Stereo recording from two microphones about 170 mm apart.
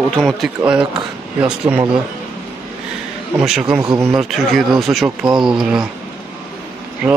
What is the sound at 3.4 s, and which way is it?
Speech, 5° right (ahead or behind).